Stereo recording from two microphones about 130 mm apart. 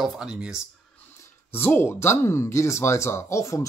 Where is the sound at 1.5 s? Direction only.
15° left (ahead or behind).